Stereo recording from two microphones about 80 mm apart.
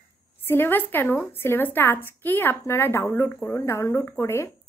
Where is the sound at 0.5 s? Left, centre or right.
Left.